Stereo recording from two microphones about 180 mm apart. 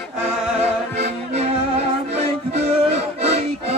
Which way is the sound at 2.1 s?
40° right (ahead or behind).